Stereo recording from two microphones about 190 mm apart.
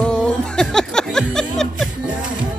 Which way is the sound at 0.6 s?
5° left (ahead or behind).